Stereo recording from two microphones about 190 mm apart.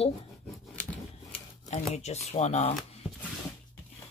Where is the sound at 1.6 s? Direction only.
35° left (ahead or behind).